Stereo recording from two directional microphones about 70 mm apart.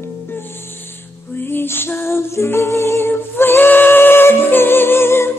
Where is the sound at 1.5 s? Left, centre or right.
Left.